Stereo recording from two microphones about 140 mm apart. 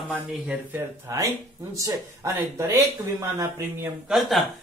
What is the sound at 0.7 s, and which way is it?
Speech, 20° right (ahead or behind).